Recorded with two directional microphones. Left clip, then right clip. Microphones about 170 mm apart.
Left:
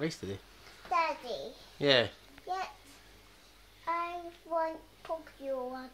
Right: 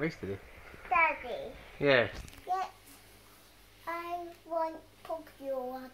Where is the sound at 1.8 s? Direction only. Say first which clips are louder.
Right 1 dB; 5° left (ahead or behind).